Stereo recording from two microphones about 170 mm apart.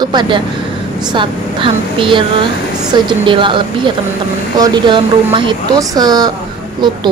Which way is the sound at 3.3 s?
30° right (ahead or behind).